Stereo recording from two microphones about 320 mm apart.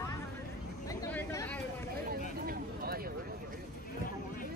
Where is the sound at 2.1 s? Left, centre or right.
Right.